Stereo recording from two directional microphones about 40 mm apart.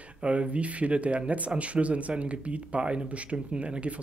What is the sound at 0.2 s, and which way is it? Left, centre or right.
Speech, right.